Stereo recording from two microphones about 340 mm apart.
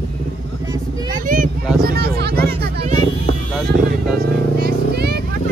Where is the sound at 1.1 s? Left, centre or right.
Right.